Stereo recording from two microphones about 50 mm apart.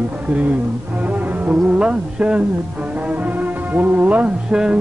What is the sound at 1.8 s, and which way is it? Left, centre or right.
Music, centre.